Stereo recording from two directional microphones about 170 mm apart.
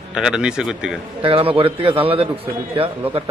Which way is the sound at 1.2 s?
30° right (ahead or behind).